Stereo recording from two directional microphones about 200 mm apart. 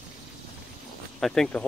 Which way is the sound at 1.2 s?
Centre (ahead or behind).